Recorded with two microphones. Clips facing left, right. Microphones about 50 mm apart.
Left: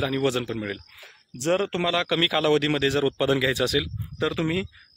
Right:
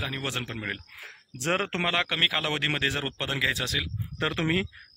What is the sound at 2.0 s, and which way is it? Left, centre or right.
A man's voice, centre.